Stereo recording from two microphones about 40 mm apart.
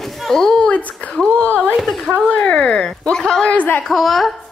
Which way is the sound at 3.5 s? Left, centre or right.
Left.